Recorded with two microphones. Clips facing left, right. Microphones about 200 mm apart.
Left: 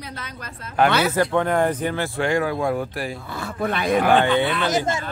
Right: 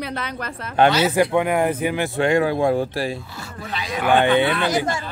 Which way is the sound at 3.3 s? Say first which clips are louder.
Left 7 dB; 55° left (ahead or behind).